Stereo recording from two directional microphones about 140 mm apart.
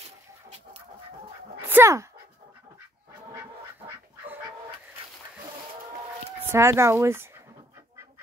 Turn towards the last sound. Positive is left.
turn(degrees=-15)  # may be behind; listen again after turning